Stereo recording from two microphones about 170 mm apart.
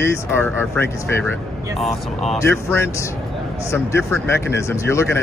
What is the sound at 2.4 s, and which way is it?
A man's voice, 15° left (ahead or behind).